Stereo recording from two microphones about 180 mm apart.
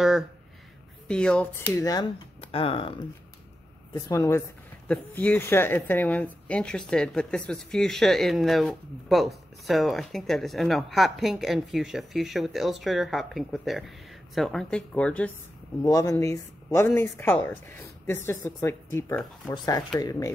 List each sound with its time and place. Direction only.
1.0 s speech: 5° left (ahead or behind)
2.4 s speech: 30° left (ahead or behind)
3.9 s speech: 15° left (ahead or behind)
15.8 s speech: 20° left (ahead or behind)